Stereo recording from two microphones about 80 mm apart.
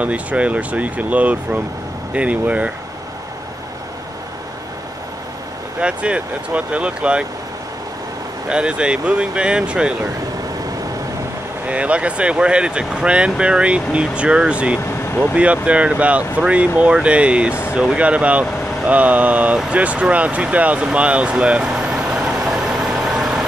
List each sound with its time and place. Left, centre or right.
0.0 s speech: centre
5.8 s speech: centre
8.5 s speech: centre
11.6 s speech: centre